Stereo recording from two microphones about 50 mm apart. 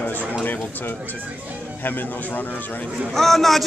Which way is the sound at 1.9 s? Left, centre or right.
Left.